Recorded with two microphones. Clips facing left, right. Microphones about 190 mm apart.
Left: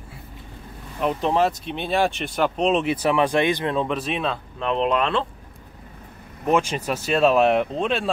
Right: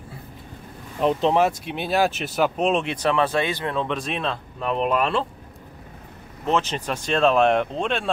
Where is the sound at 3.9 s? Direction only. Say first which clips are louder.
Left 2 dB; 5° left (ahead or behind).